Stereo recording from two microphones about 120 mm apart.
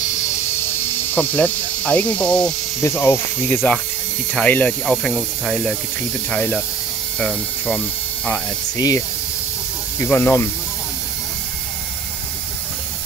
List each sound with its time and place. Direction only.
1.1 s speech: 10° left (ahead or behind)
2.8 s speech: 20° left (ahead or behind)
4.9 s speech: centre (ahead or behind)
8.7 s speech: 30° left (ahead or behind)
9.9 s speech: 15° left (ahead or behind)